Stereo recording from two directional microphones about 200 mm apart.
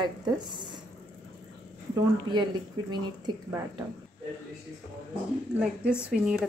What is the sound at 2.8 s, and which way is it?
Speech, 20° right (ahead or behind).